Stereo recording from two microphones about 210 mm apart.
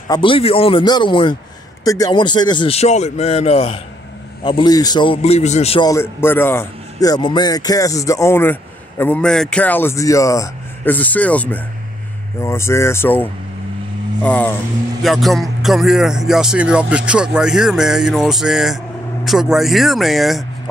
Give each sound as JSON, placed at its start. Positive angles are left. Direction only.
{"t": 0.1, "sound": "speech", "side_deg": 25}
{"t": 5.9, "sound": "a man's voice", "side_deg": 10}